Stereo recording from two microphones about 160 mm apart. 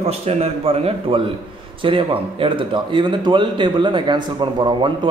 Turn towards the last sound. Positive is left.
turn(degrees=-30)  # may be behind; listen again after turning